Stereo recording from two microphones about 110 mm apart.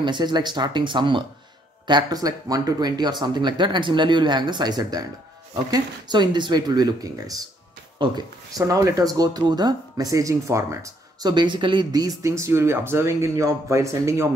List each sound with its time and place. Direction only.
0.0 s speech: 40° right (ahead or behind)
8.0 s speech: 45° right (ahead or behind)
8.5 s speech: 30° right (ahead or behind)